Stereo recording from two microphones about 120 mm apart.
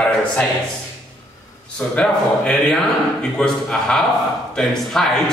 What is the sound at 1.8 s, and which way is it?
Speech, 10° left (ahead or behind).